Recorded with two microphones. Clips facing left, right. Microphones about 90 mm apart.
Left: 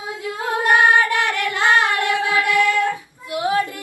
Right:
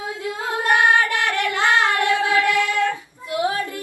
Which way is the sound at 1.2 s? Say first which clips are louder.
Even; 20° right (ahead or behind).